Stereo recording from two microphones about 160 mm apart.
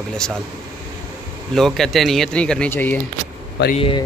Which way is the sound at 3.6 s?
90° left.